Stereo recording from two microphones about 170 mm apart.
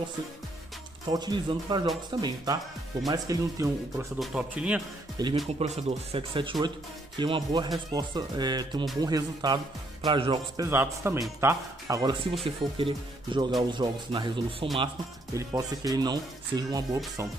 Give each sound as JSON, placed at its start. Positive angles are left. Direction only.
{"t": 1.0, "sound": "speech", "side_deg": -25}
{"t": 4.2, "sound": "a man's voice", "side_deg": -5}
{"t": 5.2, "sound": "speech", "side_deg": -25}
{"t": 5.6, "sound": "speech", "side_deg": -35}
{"t": 10.7, "sound": "speech", "side_deg": -15}